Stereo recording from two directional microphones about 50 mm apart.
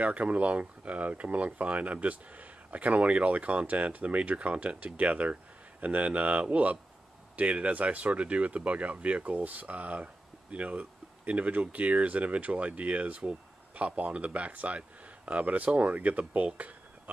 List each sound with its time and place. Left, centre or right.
0.0 s speech: right